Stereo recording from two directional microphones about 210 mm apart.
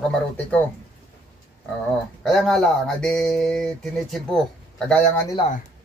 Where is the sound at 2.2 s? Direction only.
Centre (ahead or behind).